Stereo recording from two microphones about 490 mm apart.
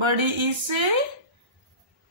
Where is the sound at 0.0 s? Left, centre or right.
Right.